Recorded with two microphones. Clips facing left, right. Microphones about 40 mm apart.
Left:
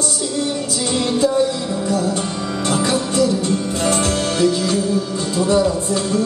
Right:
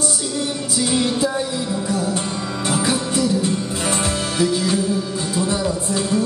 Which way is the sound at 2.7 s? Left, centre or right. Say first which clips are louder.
Left 2 dB; centre.